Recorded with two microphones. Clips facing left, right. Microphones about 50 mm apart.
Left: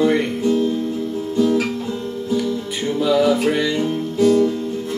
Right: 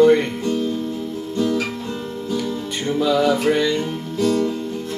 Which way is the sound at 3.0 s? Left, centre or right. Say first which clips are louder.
Left 1 dB; centre.